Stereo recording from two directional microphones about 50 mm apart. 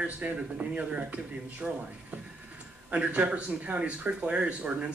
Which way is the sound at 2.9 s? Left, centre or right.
Right.